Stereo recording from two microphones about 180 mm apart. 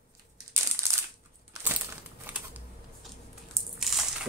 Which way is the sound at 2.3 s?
10° right (ahead or behind).